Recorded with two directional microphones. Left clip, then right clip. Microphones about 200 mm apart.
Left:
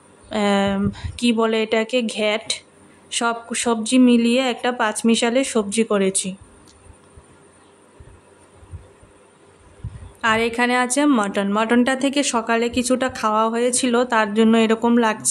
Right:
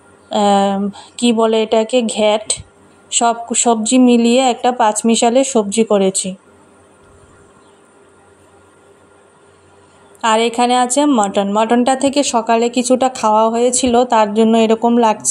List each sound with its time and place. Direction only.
0.4 s a woman's voice: 5° right (ahead or behind)
10.2 s a woman's voice: 10° right (ahead or behind)